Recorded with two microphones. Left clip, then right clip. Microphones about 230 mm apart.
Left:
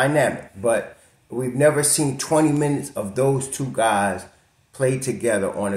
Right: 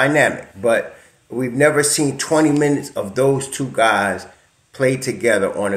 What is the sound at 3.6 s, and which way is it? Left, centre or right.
Speech, centre.